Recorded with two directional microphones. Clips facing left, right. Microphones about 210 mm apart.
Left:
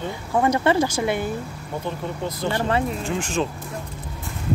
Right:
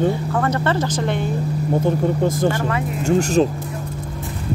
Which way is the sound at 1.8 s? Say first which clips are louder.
Right 8 dB; 45° right (ahead or behind).